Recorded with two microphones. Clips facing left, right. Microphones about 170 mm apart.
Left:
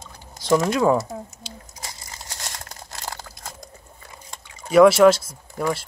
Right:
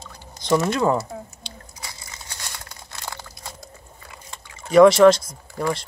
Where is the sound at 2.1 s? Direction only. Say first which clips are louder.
Left 2 dB; 40° left (ahead or behind).